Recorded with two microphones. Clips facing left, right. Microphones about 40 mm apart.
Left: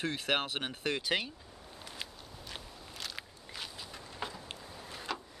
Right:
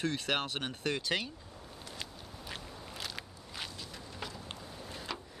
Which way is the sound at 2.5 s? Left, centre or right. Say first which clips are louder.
Right 3 dB; centre.